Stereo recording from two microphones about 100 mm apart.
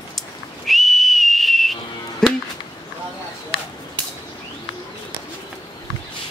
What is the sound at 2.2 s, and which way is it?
Music, 5° left (ahead or behind).